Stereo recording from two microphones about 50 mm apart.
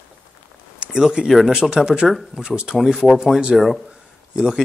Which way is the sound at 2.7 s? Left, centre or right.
Centre.